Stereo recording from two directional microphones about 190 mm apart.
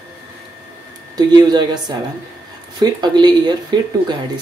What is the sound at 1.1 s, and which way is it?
A woman's voice, 20° right (ahead or behind).